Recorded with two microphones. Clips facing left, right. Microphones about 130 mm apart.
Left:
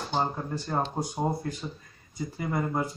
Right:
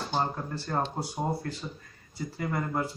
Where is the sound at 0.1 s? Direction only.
10° left (ahead or behind).